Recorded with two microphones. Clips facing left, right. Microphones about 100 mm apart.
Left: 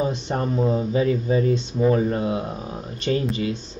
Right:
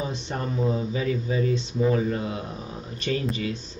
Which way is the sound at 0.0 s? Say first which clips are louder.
Left 6 dB; 35° left (ahead or behind).